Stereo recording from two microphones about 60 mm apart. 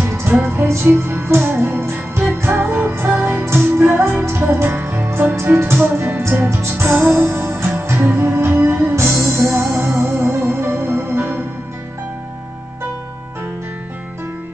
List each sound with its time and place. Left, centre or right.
0.0 s music: right
2.6 s music: right
9.8 s music: centre
10.2 s music: right